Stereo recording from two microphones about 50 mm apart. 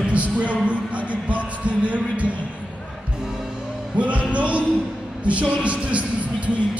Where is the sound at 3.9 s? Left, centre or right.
Right.